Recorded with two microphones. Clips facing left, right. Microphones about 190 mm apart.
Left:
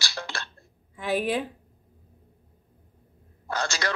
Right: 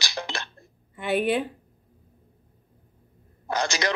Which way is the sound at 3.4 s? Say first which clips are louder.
Right 3 dB; 15° right (ahead or behind).